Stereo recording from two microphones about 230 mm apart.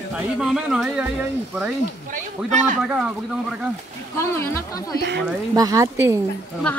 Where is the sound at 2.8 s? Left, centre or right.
Centre.